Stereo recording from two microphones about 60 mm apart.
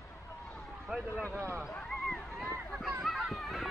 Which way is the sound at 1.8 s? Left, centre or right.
Centre.